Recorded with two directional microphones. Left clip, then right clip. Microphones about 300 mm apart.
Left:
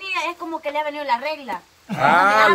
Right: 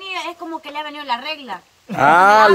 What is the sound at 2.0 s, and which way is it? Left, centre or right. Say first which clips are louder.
Speech: right 4 dB; right.